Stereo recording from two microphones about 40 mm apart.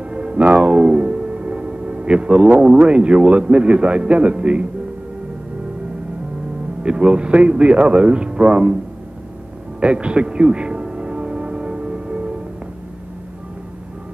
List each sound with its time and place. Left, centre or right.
0.1 s music: right
2.9 s speech: right
6.8 s speech: right
9.8 s music: right